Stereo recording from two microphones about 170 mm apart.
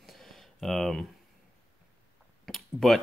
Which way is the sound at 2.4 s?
Centre (ahead or behind).